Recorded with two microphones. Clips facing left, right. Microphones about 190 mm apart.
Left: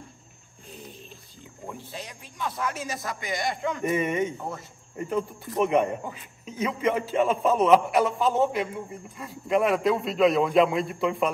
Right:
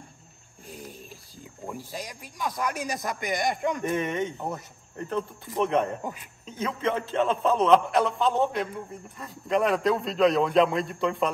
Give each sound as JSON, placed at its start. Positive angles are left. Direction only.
{"t": 0.7, "sound": "a sound", "side_deg": -10}
{"t": 1.7, "sound": "speech", "side_deg": -10}
{"t": 3.8, "sound": "a man's voice", "side_deg": 5}